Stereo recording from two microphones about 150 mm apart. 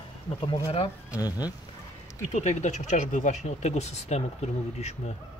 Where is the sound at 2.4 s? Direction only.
50° left (ahead or behind).